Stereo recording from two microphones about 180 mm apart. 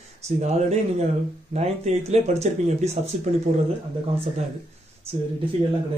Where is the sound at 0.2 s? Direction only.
35° right (ahead or behind).